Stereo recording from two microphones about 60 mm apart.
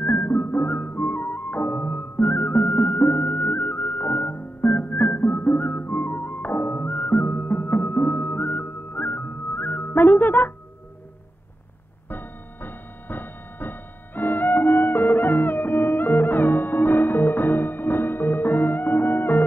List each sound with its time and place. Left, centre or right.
0.0 s music: left
12.1 s music: left